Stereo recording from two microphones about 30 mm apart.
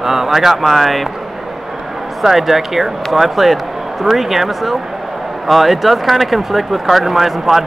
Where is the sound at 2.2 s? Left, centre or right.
Centre.